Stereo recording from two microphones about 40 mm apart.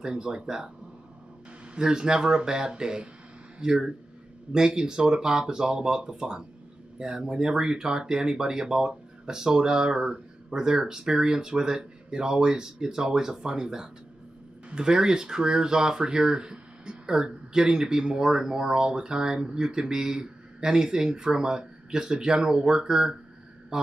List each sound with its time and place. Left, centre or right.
0.0 s speech: right
1.8 s speech: centre